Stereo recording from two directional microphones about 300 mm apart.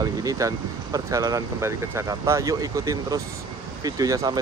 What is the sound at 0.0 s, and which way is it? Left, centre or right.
Speech, centre.